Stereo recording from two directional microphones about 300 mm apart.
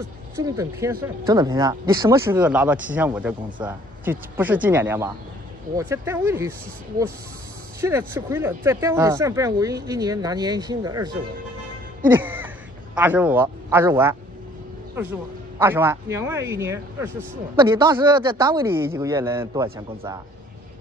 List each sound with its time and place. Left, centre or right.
0.4 s speech: centre
8.1 s speech: centre
12.1 s music: centre
12.9 s speech: centre
15.6 s speech: centre